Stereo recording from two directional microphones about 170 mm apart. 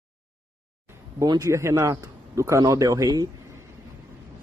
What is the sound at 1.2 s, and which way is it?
Speech, 20° right (ahead or behind).